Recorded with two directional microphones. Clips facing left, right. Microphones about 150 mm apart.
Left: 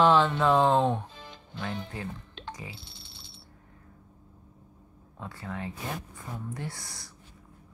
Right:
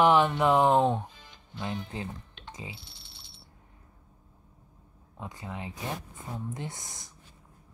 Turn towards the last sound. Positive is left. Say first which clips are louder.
# even
turn(degrees=-20)  # may be behind; listen again after turning